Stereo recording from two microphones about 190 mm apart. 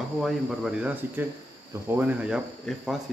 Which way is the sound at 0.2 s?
5° right (ahead or behind).